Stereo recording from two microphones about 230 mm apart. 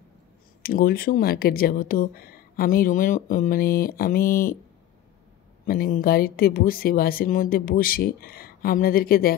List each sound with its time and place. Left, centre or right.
0.6 s speech: left
5.7 s speech: left